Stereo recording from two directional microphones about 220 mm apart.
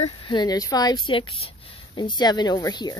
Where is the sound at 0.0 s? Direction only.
20° left (ahead or behind).